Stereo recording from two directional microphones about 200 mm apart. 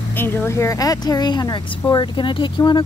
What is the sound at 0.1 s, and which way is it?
Speech, 10° left (ahead or behind).